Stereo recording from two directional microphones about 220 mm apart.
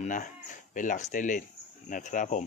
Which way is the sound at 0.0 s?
35° left (ahead or behind).